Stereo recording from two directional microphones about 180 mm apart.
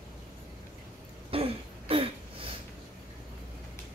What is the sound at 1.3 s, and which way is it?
Throat clearing, 30° right (ahead or behind).